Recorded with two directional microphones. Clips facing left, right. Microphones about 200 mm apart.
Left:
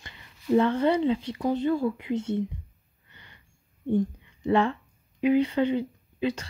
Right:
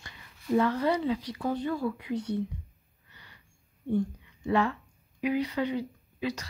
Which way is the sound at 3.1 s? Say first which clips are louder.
Left 2 dB; 25° left (ahead or behind).